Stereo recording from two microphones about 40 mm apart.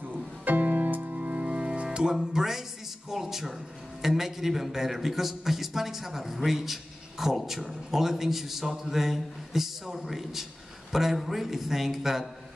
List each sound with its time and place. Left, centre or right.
0.1 s music: right
1.4 s music: right
2.3 s a man's voice: centre